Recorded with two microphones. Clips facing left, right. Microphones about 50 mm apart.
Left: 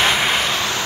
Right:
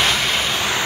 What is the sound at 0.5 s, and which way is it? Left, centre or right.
Vehicle, right.